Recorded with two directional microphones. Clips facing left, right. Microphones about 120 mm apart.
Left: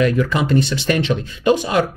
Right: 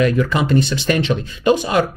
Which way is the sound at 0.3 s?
30° right (ahead or behind).